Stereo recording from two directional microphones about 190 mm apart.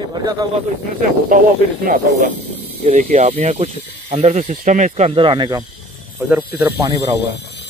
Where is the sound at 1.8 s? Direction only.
50° right (ahead or behind).